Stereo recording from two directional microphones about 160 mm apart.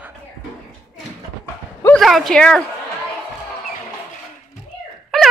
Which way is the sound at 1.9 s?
Centre (ahead or behind).